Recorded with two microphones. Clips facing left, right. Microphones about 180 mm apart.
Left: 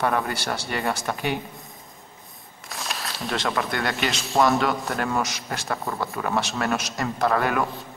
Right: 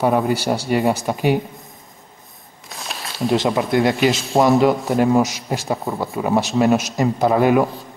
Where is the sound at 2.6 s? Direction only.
Centre (ahead or behind).